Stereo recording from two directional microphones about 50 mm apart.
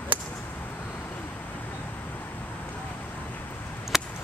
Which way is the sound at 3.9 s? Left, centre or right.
Centre.